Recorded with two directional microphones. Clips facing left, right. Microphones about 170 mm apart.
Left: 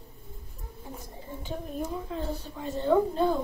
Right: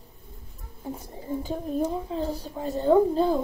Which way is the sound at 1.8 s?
30° right (ahead or behind).